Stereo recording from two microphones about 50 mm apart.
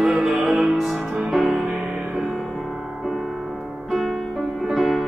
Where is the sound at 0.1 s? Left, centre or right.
Centre.